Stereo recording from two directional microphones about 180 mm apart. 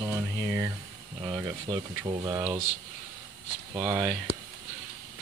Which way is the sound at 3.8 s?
15° right (ahead or behind).